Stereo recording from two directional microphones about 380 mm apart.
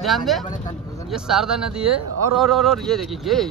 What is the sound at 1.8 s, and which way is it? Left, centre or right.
Speech, right.